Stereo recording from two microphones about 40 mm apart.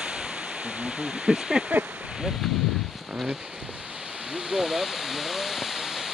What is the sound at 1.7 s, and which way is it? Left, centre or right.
Speech, right.